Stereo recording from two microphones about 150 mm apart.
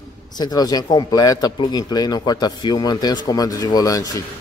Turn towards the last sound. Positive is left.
turn(degrees=25)  # may be behind; listen again after turning